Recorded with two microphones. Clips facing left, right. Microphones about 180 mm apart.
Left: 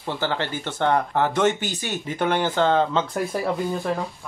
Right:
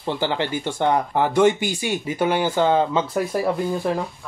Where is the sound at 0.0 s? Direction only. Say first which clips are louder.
Right 3 dB; 15° right (ahead or behind).